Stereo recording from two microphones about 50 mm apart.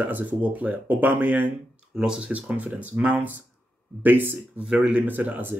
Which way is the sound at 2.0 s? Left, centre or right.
Centre.